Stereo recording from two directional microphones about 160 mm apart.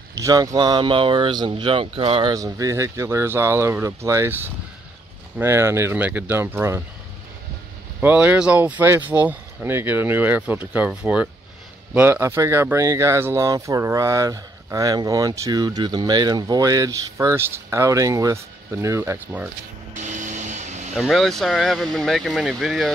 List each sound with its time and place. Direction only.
0.2 s speech: 20° right (ahead or behind)
2.3 s speech: 20° right (ahead or behind)
8.0 s speech: 10° right (ahead or behind)
19.9 s vehicle: 50° right (ahead or behind)
20.9 s speech: centre (ahead or behind)